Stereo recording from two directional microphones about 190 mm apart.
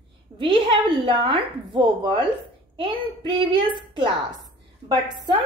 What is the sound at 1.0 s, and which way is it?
Speech, 25° right (ahead or behind).